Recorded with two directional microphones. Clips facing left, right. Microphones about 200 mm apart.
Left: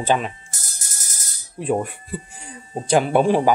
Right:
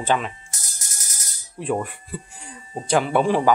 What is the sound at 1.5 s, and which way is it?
A man's voice, 20° left (ahead or behind).